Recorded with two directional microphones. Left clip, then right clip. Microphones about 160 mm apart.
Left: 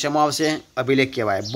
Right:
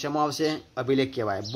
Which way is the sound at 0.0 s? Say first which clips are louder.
Left 6 dB; 20° left (ahead or behind).